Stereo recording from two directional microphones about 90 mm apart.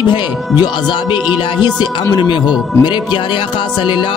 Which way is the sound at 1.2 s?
55° left (ahead or behind).